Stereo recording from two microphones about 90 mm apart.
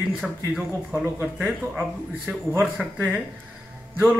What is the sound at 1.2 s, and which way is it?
Speech, 20° right (ahead or behind).